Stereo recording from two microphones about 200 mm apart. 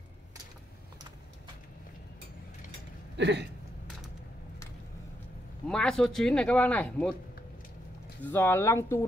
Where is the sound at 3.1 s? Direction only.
60° right (ahead or behind).